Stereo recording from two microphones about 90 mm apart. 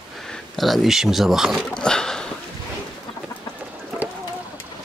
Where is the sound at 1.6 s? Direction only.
10° left (ahead or behind).